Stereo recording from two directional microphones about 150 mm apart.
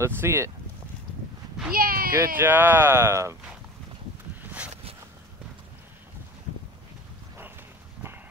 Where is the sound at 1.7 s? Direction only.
75° right (ahead or behind).